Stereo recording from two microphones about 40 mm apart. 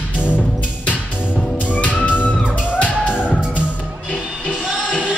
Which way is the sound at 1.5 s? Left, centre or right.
Left.